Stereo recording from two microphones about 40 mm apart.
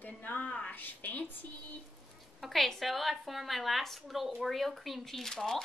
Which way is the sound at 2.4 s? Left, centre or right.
Centre.